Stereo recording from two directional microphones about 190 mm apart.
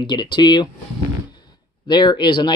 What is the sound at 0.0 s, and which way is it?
Speech, 25° left (ahead or behind).